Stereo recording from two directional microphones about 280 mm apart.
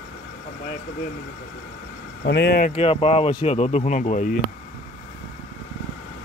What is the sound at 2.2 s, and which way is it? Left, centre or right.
Speech, left.